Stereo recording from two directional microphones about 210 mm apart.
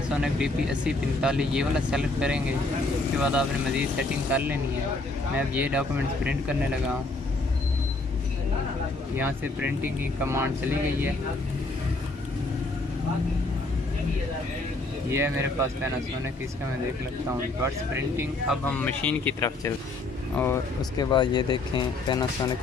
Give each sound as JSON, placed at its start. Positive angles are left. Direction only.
{"t": 0.1, "sound": "speech", "side_deg": -5}
{"t": 9.1, "sound": "speech", "side_deg": -10}
{"t": 15.0, "sound": "speech", "side_deg": -10}
{"t": 17.9, "sound": "speech", "side_deg": -10}
{"t": 18.6, "sound": "speech", "side_deg": 10}
{"t": 21.0, "sound": "speech", "side_deg": 20}